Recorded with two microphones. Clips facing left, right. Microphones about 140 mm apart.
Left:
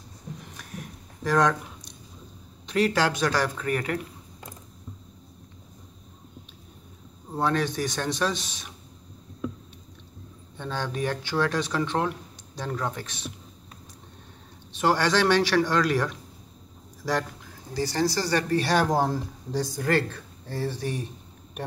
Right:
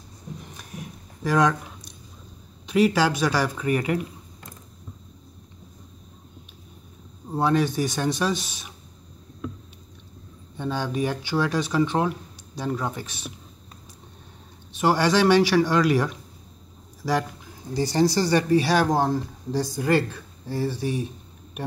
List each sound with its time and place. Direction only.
0.7 s a sound: 15° right (ahead or behind)
1.2 s speech: 5° right (ahead or behind)
7.3 s speech: 10° right (ahead or behind)
10.6 s speech: 10° right (ahead or behind)
14.7 s speech: 10° right (ahead or behind)
17.7 s speech: 20° right (ahead or behind)